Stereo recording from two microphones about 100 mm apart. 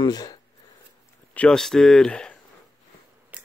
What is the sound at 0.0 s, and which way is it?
Speech, 40° left (ahead or behind).